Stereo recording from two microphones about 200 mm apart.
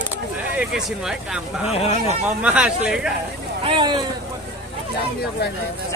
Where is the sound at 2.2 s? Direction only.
5° right (ahead or behind).